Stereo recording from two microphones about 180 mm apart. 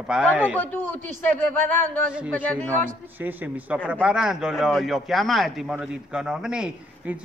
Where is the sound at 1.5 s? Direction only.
10° left (ahead or behind).